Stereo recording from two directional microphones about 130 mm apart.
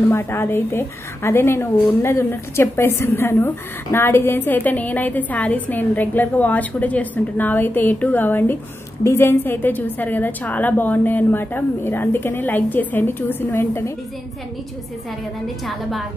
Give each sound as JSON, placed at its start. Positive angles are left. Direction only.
{"t": 0.1, "sound": "a woman's voice", "side_deg": 20}
{"t": 15.4, "sound": "a woman's voice", "side_deg": 0}